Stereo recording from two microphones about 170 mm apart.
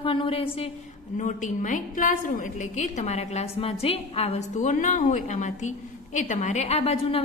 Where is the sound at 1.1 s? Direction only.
45° left (ahead or behind).